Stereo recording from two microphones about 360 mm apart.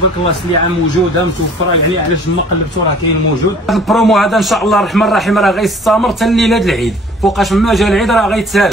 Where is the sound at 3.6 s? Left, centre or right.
Centre.